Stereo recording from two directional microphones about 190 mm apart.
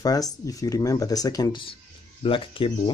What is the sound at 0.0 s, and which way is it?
Speech, 20° left (ahead or behind).